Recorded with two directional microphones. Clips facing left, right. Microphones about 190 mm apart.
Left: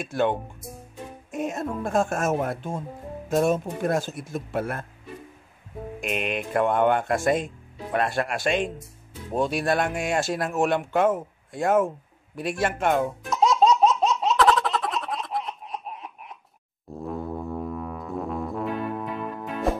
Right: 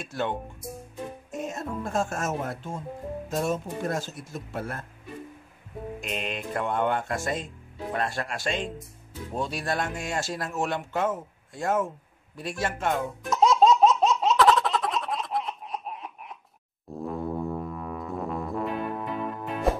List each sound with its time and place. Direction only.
0.0 s speech: 55° left (ahead or behind)
1.3 s speech: 55° left (ahead or behind)
5.9 s speech: 60° left (ahead or behind)
13.2 s laughter: centre (ahead or behind)
16.9 s music: centre (ahead or behind)